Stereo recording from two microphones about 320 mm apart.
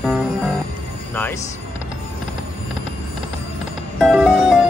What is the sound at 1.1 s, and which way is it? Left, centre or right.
Music, centre.